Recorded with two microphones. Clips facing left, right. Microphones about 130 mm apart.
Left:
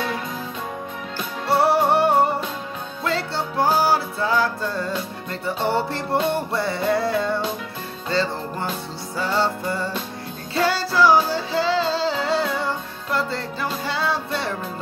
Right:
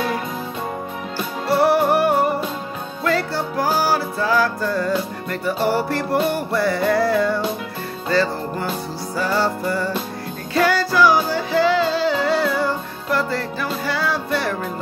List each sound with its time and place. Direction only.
1.5 s music: 25° left (ahead or behind)